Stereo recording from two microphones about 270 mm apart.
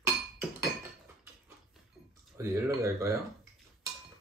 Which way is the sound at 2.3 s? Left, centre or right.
Centre.